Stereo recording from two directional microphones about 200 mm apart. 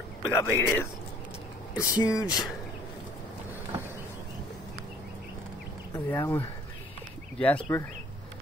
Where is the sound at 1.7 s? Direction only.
20° left (ahead or behind).